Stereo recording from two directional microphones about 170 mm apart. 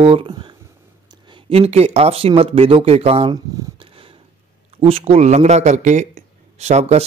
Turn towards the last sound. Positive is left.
turn(degrees=-40)  # may be behind; listen again after turning